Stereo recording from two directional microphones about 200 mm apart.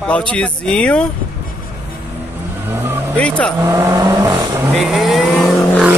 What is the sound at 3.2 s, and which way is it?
Speech, 5° left (ahead or behind).